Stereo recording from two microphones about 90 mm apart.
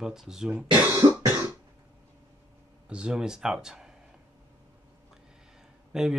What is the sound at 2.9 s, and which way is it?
Speech, 10° right (ahead or behind).